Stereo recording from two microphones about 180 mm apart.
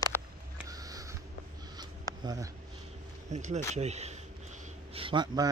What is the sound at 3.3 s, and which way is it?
Speech, 40° right (ahead or behind).